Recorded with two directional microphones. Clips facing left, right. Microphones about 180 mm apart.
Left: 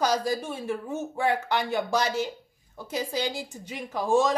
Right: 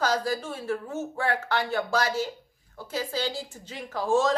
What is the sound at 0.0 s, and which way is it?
A woman's voice, 15° left (ahead or behind).